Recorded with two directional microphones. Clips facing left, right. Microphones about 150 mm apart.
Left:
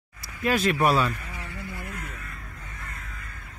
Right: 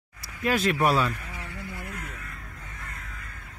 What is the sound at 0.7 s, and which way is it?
Speech, 25° left (ahead or behind).